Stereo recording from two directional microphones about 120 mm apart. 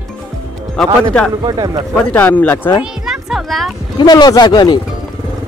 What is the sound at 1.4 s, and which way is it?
Speech, 35° right (ahead or behind).